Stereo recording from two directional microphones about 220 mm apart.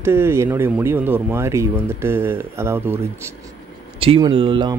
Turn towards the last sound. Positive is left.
turn(degrees=-25)  # may be behind; listen again after turning